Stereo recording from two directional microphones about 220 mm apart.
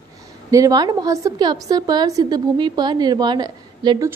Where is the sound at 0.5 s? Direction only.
15° right (ahead or behind).